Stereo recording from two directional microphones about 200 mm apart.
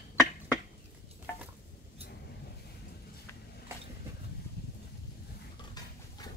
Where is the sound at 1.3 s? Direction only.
10° left (ahead or behind).